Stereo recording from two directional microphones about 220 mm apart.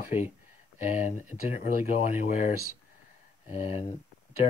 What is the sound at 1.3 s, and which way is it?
Speech, 35° left (ahead or behind).